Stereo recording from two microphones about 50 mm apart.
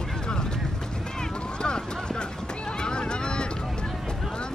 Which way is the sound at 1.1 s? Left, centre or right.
Centre.